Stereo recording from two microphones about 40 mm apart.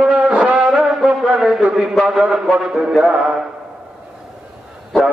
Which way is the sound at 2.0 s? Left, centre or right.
Centre.